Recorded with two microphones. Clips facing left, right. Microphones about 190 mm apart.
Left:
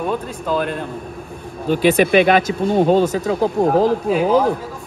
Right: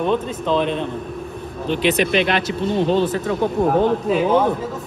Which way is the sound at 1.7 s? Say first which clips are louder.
Left 4 dB; 45° left (ahead or behind).